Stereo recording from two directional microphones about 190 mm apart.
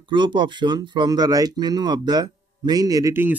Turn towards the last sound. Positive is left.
turn(degrees=-15)  # may be behind; listen again after turning